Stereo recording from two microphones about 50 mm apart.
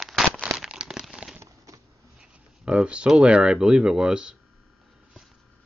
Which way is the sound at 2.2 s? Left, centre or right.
Centre.